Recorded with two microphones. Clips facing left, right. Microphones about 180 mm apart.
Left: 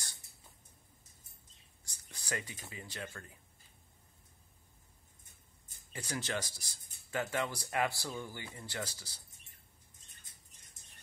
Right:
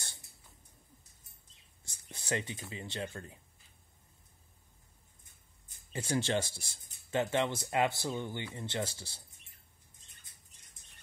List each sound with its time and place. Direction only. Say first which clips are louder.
1.9 s whispering: right 5 dB; 25° right (ahead or behind)
2.7 s speech: right 5 dB; 25° right (ahead or behind)
5.9 s speech: right 7 dB; 25° right (ahead or behind)